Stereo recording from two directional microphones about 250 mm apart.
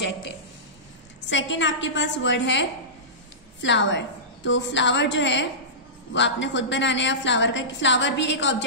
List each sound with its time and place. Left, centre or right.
1.3 s a woman's voice: left
3.6 s a woman's voice: left